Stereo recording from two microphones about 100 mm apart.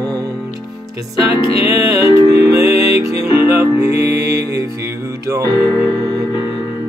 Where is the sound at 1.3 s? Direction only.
30° right (ahead or behind).